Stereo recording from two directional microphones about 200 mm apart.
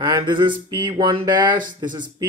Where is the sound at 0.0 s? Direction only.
25° right (ahead or behind).